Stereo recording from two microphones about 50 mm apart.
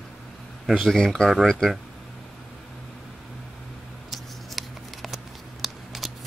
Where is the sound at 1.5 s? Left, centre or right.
Centre.